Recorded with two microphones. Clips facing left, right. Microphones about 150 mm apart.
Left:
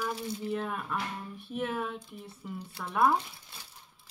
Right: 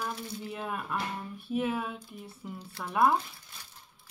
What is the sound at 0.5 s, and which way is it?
Speech, 5° right (ahead or behind).